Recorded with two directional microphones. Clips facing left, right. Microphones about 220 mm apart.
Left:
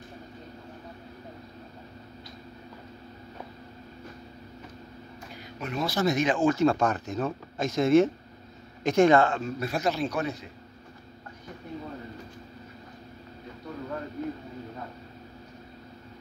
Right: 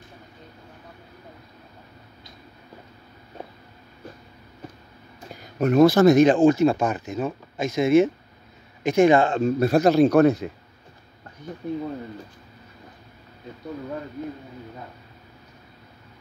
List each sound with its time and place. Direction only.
5.6 s speech: 45° right (ahead or behind)
6.4 s speech: 15° right (ahead or behind)
9.3 s a man's voice: 35° right (ahead or behind)